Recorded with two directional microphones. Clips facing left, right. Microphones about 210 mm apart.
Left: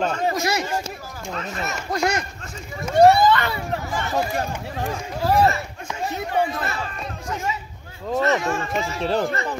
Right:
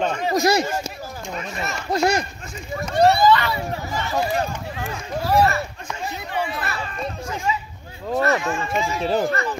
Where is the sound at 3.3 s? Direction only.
55° left (ahead or behind).